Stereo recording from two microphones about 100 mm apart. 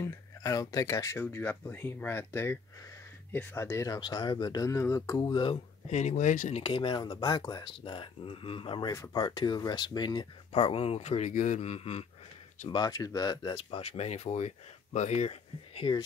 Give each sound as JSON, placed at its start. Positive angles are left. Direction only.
{"t": 0.0, "sound": "speech", "side_deg": 35}
{"t": 1.2, "sound": "speech", "side_deg": 20}
{"t": 4.6, "sound": "speech", "side_deg": 30}
{"t": 6.5, "sound": "speech", "side_deg": 65}
{"t": 7.0, "sound": "speech", "side_deg": 45}
{"t": 7.8, "sound": "speech", "side_deg": 60}
{"t": 8.9, "sound": "speech", "side_deg": 35}
{"t": 10.5, "sound": "speech", "side_deg": 70}
{"t": 12.6, "sound": "speech", "side_deg": 45}
{"t": 13.7, "sound": "speech", "side_deg": 90}